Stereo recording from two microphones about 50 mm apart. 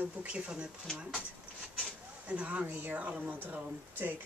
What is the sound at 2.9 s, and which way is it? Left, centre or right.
Speech, right.